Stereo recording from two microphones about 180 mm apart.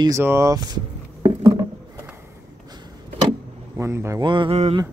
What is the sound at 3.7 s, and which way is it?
Speech, 15° right (ahead or behind).